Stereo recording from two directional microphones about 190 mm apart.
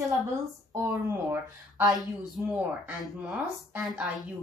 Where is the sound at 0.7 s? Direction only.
15° right (ahead or behind).